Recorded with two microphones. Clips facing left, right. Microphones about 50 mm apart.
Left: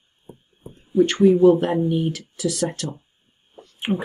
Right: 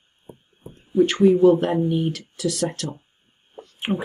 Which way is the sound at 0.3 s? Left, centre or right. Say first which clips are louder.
Even; right.